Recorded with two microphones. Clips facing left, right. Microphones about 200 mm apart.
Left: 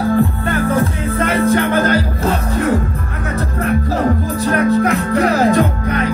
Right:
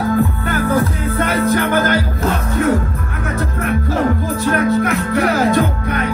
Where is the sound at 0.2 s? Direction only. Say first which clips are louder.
Left 1 dB; 30° left (ahead or behind).